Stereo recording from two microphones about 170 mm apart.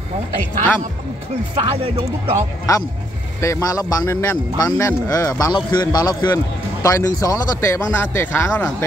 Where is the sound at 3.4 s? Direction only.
15° left (ahead or behind).